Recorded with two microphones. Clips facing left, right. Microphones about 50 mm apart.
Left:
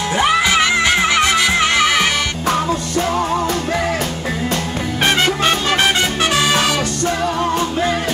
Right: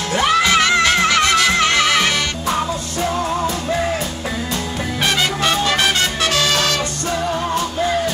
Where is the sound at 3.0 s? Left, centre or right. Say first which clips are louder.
Left 2 dB; left.